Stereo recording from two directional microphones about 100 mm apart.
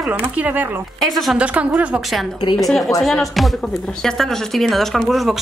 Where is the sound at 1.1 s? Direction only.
Centre (ahead or behind).